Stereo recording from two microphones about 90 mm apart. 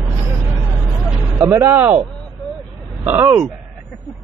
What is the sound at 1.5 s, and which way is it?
Speech, 30° right (ahead or behind).